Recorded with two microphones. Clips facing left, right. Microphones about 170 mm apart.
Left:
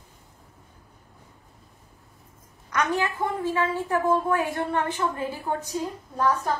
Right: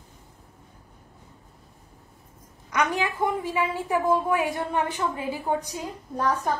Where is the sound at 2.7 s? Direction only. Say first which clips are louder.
Even; 10° right (ahead or behind).